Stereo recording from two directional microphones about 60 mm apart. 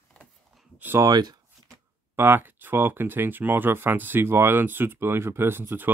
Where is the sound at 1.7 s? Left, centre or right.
Right.